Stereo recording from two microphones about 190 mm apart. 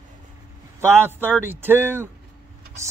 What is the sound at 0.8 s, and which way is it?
Speech, 15° right (ahead or behind).